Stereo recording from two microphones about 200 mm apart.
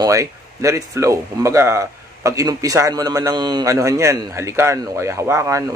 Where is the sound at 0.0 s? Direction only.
15° right (ahead or behind).